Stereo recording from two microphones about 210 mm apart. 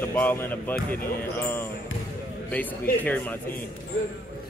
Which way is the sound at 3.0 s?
10° left (ahead or behind).